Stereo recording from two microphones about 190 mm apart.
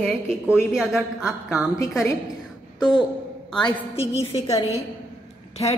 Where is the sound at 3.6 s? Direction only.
30° left (ahead or behind).